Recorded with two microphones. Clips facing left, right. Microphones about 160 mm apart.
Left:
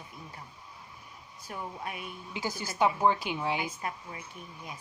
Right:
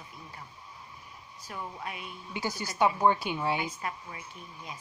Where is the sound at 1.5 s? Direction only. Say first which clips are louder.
Left 1 dB; 45° left (ahead or behind).